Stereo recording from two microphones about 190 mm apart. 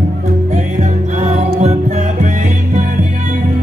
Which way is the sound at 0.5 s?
40° right (ahead or behind).